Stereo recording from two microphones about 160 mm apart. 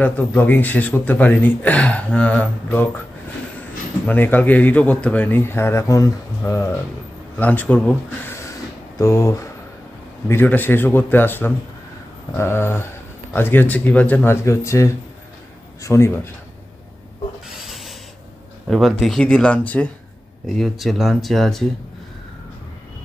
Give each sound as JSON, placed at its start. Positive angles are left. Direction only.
{"t": 0.0, "sound": "speech", "side_deg": 15}
{"t": 4.0, "sound": "speech", "side_deg": 10}
{"t": 17.6, "sound": "rub", "side_deg": 0}
{"t": 18.7, "sound": "speech", "side_deg": 0}